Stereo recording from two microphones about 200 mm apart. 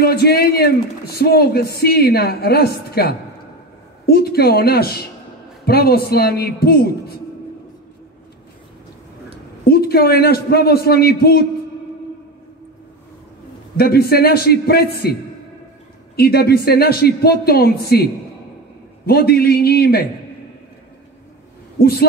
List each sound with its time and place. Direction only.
0.0 s a man's voice: 50° left (ahead or behind)
9.7 s a man's voice: 50° left (ahead or behind)
13.7 s a man's voice: 50° left (ahead or behind)
16.2 s a man's voice: 50° left (ahead or behind)
21.7 s a man's voice: 50° left (ahead or behind)